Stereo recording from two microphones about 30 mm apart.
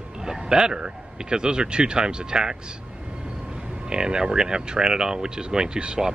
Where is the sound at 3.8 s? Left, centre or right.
Right.